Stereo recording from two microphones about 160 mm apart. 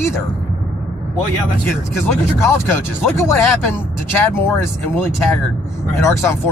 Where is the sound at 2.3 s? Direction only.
20° left (ahead or behind).